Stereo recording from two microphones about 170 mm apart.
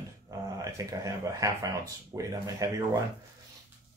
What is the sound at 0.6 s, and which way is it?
Speech, 20° right (ahead or behind).